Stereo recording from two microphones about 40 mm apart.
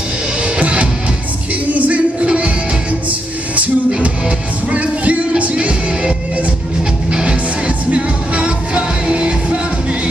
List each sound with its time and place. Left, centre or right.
0.4 s music: right
1.5 s music: right
6.8 s music: centre